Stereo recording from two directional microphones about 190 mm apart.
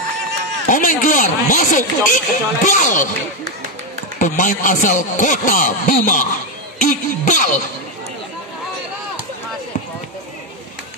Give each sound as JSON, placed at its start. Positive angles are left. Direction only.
{"t": 0.7, "sound": "speech", "side_deg": 45}
{"t": 4.2, "sound": "speech", "side_deg": 40}